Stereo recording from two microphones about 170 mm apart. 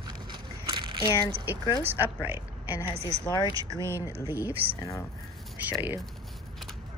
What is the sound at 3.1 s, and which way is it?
Speech, 40° right (ahead or behind).